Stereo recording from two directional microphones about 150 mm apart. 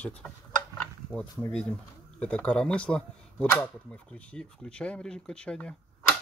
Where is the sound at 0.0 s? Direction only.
5° left (ahead or behind).